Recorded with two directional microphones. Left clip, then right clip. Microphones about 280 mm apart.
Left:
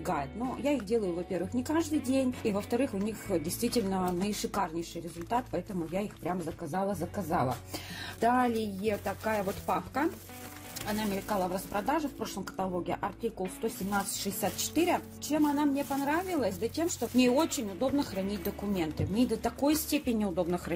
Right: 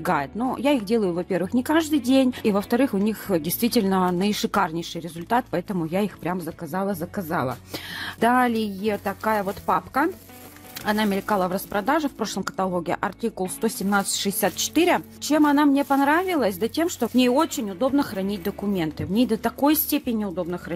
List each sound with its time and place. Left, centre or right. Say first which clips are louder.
0.0 s a woman's voice: right 9 dB; right